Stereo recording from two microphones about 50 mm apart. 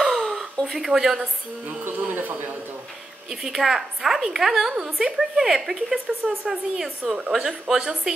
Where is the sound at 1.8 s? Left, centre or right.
Right.